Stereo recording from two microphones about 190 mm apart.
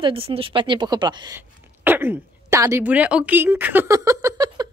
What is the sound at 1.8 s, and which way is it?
A woman's voice, 10° right (ahead or behind).